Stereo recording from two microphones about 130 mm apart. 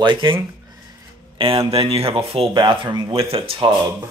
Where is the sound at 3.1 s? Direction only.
45° right (ahead or behind).